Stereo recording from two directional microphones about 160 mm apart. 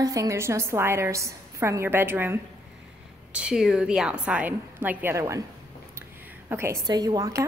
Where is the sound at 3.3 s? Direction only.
5° right (ahead or behind).